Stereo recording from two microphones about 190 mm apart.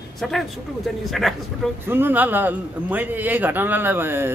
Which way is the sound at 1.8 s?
10° right (ahead or behind).